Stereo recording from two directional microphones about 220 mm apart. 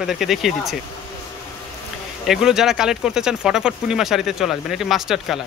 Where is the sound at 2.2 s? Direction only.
Centre (ahead or behind).